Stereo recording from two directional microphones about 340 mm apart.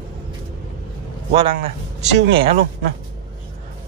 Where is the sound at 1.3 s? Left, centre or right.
Centre.